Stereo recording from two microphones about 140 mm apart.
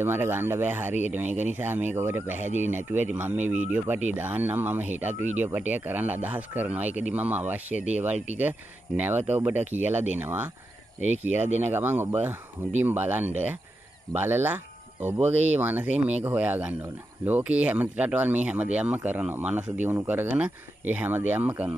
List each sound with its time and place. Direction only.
0.0 s speech: 15° right (ahead or behind)